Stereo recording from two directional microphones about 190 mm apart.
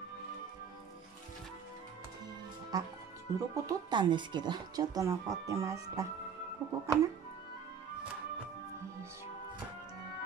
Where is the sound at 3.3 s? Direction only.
15° right (ahead or behind).